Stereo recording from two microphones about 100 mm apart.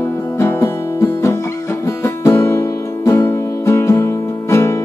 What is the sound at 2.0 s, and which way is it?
Music, 30° left (ahead or behind).